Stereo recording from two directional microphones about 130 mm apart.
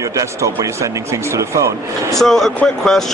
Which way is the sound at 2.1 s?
Centre (ahead or behind).